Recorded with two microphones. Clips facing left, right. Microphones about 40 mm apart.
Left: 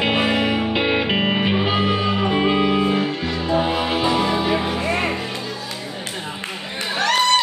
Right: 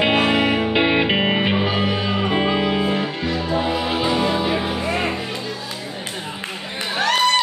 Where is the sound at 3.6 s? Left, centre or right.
Centre.